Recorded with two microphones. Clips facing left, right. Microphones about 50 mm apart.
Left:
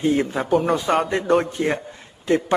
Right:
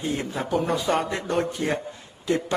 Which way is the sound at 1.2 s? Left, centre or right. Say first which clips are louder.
Left 6 dB; left.